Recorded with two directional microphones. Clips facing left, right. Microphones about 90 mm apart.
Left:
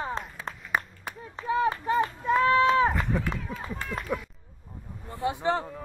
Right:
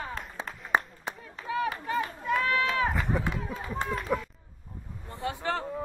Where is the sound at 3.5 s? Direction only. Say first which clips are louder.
Right 2 dB; 25° right (ahead or behind).